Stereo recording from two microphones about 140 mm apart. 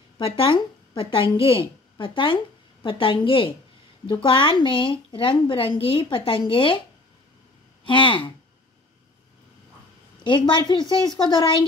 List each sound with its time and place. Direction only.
0.2 s a woman's voice: 40° left (ahead or behind)
7.8 s a woman's voice: 35° left (ahead or behind)
10.2 s a woman's voice: 35° left (ahead or behind)